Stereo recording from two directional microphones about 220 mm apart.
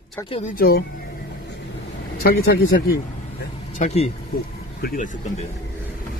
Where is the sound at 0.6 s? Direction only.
45° left (ahead or behind).